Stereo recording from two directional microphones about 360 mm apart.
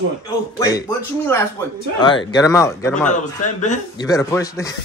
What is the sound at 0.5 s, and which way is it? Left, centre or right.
Speech, centre.